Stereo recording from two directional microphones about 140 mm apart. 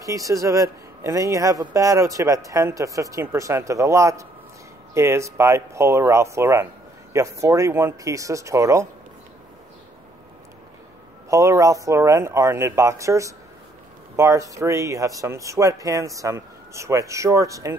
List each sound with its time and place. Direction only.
0.0 s a man's voice: 25° right (ahead or behind)
11.2 s a man's voice: 20° right (ahead or behind)